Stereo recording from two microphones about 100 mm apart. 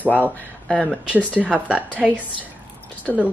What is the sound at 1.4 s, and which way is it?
Speech, centre (ahead or behind).